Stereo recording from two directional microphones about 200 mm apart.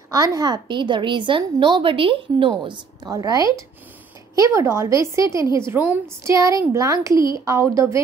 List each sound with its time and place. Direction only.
0.1 s a woman's voice: 15° right (ahead or behind)